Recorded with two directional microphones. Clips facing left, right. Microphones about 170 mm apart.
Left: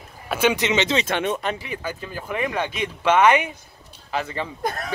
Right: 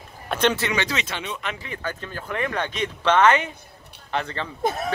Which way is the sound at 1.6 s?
10° left (ahead or behind).